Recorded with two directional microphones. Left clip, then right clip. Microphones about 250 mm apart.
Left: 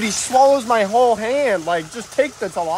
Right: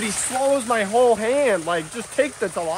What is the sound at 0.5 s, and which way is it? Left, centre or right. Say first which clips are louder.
Speech: left 3 dB; centre.